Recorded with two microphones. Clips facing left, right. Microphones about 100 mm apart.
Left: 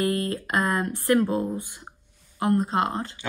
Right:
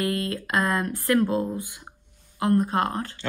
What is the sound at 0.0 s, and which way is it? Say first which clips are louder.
Speech: left 1 dB; 25° left (ahead or behind).